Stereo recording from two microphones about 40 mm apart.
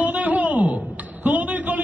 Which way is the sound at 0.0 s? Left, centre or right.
Right.